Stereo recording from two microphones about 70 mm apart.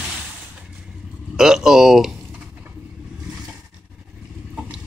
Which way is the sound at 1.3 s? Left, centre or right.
Centre.